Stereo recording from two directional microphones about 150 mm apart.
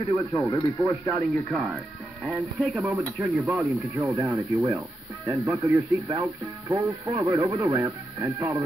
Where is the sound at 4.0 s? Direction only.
20° right (ahead or behind).